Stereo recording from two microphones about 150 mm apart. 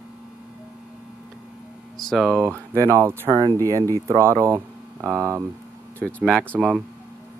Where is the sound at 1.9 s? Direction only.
Centre (ahead or behind).